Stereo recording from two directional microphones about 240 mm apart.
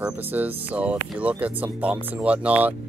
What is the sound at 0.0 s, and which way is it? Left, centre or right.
Speech, centre.